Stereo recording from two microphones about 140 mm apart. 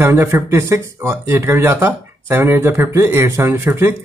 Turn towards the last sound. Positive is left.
turn(degrees=-15)  # may be behind; listen again after turning